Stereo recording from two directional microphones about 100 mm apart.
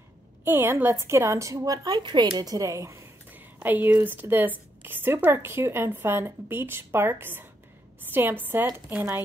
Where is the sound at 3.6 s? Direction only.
15° right (ahead or behind).